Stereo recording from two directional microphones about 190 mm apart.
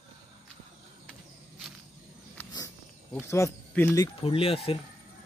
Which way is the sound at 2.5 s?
15° left (ahead or behind).